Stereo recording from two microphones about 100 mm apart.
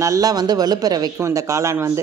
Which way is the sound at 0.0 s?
35° right (ahead or behind).